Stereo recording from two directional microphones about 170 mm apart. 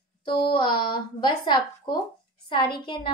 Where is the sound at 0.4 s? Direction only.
30° left (ahead or behind).